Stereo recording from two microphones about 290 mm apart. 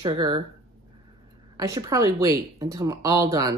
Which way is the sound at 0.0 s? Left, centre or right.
Centre.